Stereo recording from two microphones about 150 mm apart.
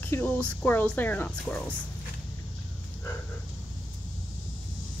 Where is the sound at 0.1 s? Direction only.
10° left (ahead or behind).